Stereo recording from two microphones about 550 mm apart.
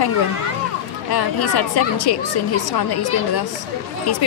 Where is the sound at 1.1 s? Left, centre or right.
Left.